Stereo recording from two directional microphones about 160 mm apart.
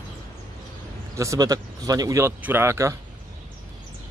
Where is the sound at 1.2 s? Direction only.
20° right (ahead or behind).